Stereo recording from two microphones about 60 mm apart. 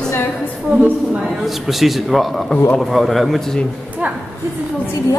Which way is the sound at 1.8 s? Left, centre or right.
Centre.